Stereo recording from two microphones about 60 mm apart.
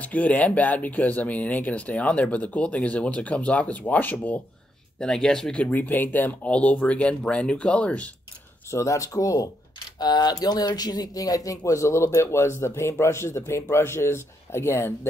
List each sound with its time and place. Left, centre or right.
0.0 s speech: left
4.9 s speech: centre
5.7 s speech: left
8.6 s speech: left
9.9 s speech: left